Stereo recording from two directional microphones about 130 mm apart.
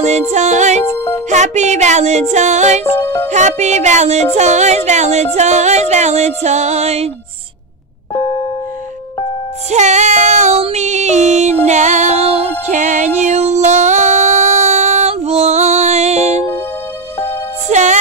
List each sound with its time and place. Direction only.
0.0 s music: 60° right (ahead or behind)
2.8 s music: 15° left (ahead or behind)
3.3 s music: 65° right (ahead or behind)
8.1 s music: 40° left (ahead or behind)
9.7 s music: 60° right (ahead or behind)
12.7 s music: 70° right (ahead or behind)
17.6 s music: 65° right (ahead or behind)